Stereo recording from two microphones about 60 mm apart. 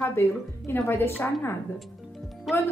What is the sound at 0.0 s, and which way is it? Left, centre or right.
A woman's voice, left.